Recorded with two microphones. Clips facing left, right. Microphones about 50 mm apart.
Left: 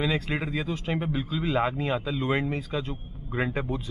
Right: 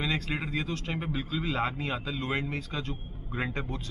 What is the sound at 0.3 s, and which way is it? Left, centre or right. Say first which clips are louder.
A man's voice: left 3 dB; centre.